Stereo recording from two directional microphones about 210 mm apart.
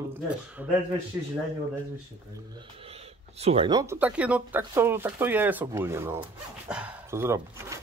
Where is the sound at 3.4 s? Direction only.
25° right (ahead or behind).